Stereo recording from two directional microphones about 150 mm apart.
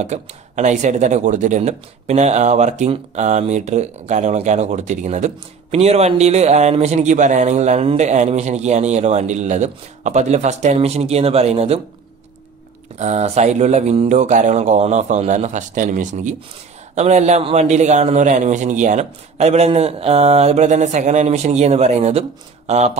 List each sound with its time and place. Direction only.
0.0 s speech: 50° right (ahead or behind)
13.0 s speech: 45° right (ahead or behind)